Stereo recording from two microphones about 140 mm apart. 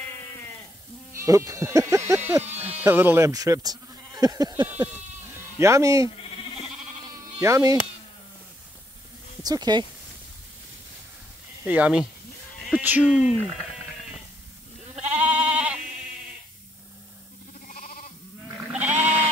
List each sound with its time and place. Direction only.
1.1 s speech: 20° right (ahead or behind)
2.4 s music: 45° right (ahead or behind)
2.8 s speech: 15° right (ahead or behind)
4.6 s speech: 15° right (ahead or behind)
7.3 s speech: 20° right (ahead or behind)
9.4 s speech: 30° right (ahead or behind)
11.6 s speech: 10° right (ahead or behind)
15.2 s goat: 10° right (ahead or behind)
17.6 s sheep: 75° left (ahead or behind)
18.7 s sheep: 10° right (ahead or behind)